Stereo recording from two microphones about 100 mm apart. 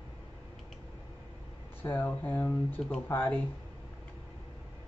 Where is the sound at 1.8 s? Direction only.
20° left (ahead or behind).